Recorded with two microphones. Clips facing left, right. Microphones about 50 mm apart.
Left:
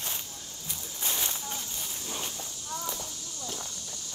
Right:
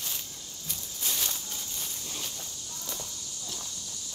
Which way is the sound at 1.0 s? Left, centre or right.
Left.